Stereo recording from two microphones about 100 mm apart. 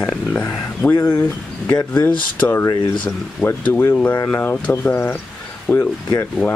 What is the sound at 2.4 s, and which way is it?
Speech, 25° left (ahead or behind).